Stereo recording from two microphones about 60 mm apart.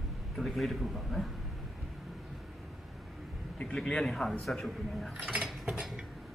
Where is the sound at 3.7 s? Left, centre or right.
Centre.